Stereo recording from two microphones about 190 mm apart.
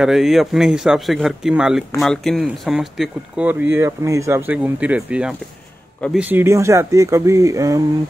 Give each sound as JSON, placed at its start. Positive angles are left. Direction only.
{"t": 0.0, "sound": "speech", "side_deg": 0}